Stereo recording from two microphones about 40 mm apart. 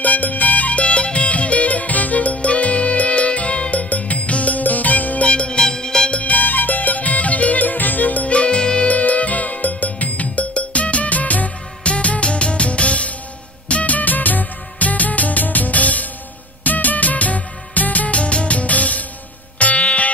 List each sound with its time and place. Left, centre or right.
0.0 s music: left
5.3 s music: left
6.1 s music: left
8.3 s music: left
8.8 s music: left